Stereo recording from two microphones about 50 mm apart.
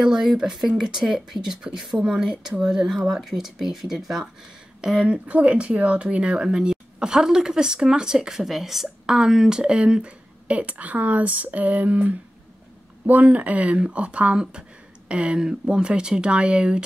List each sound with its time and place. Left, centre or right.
0.0 s speech: centre
4.8 s speech: right